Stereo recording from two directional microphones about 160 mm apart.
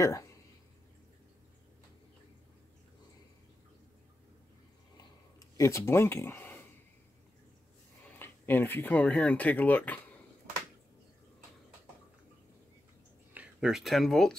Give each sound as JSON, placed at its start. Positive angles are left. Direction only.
{"t": 0.0, "sound": "speech", "side_deg": 20}
{"t": 4.9, "sound": "a sound", "side_deg": 20}
{"t": 8.2, "sound": "speech", "side_deg": 15}
{"t": 13.3, "sound": "speech", "side_deg": -5}